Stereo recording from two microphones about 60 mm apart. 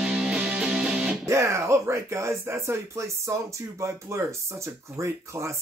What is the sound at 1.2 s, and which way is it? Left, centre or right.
A man's voice, right.